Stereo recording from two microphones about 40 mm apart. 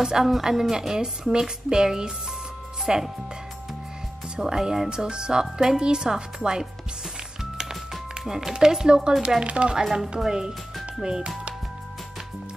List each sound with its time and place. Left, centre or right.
0.0 s a woman's voice: centre
4.4 s speech: centre
7.5 s music: centre
8.5 s a woman's voice: centre